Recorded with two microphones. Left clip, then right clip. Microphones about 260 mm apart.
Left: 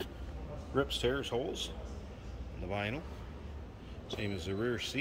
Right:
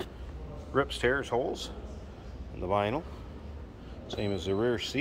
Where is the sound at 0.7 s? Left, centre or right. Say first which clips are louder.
Right 5 dB; centre.